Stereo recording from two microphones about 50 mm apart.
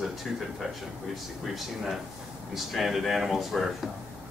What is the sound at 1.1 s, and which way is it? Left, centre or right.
Speech, centre.